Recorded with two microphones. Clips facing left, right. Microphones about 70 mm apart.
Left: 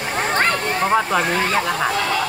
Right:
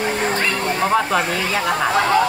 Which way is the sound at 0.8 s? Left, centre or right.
Centre.